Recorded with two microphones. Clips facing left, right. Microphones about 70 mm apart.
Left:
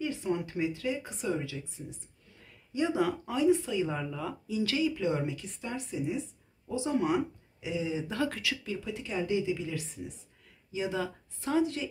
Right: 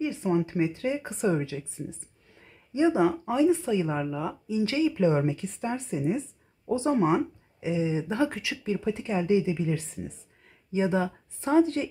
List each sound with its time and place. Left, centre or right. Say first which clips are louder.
0.0 s speech: right 5 dB; right
7.1 s speech: right 4 dB; right